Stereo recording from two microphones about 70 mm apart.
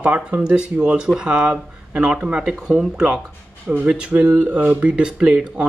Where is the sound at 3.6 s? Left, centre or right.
Centre.